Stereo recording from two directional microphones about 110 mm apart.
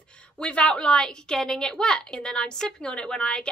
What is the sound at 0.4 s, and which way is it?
A woman's voice, 10° left (ahead or behind).